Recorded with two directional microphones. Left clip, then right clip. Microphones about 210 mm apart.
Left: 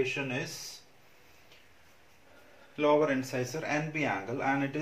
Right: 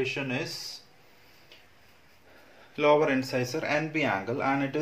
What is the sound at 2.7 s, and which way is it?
Speech, 40° right (ahead or behind).